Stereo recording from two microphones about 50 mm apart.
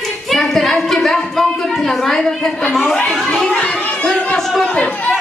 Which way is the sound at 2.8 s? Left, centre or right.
Centre.